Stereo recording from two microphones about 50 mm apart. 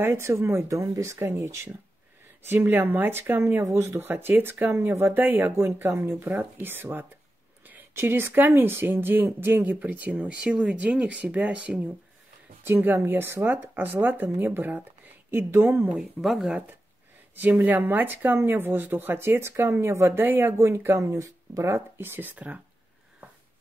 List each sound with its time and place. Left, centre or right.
0.0 s speech: right
1.2 s speech: right
2.4 s speech: right
3.6 s speech: right
4.0 s speech: right
10.3 s speech: right
12.6 s speech: right
16.0 s speech: centre
17.6 s speech: right
20.2 s speech: right
20.6 s speech: right
21.0 s speech: right
22.2 s speech: right